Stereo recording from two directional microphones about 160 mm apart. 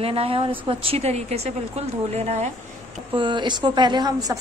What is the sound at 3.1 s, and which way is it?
A woman's voice, 30° right (ahead or behind).